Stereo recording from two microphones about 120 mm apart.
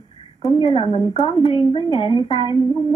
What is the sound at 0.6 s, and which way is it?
A woman's voice, 45° left (ahead or behind).